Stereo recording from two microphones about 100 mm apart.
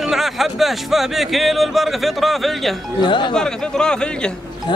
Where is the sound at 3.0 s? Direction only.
55° left (ahead or behind).